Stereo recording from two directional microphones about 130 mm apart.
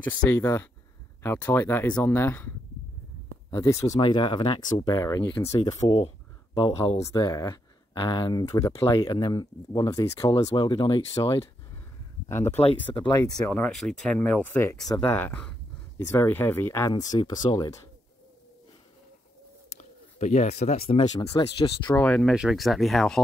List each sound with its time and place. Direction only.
0.0 s speech: 20° left (ahead or behind)
4.0 s speech: 40° left (ahead or behind)
4.6 s speech: 30° left (ahead or behind)
12.4 s speech: 50° left (ahead or behind)
13.1 s speech: 30° left (ahead or behind)
13.4 s speech: 10° left (ahead or behind)
16.9 s speech: 35° left (ahead or behind)
19.8 s speech: 60° left (ahead or behind); by 21.9 s 40° left (ahead or behind)
21.9 s speech: 10° left (ahead or behind)
22.3 s speech: 5° right (ahead or behind)